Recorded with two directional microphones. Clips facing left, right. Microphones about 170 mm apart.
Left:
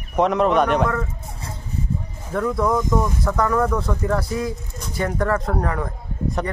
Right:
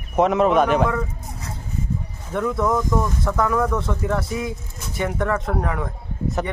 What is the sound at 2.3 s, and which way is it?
Speech, centre (ahead or behind).